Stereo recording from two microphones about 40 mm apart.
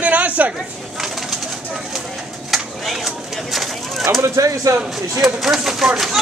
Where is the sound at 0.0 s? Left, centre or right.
Right.